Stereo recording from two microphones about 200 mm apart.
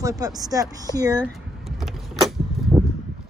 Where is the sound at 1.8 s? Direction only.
Centre (ahead or behind).